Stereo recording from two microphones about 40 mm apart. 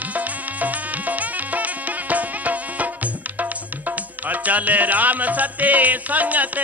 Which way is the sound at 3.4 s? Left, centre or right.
Right.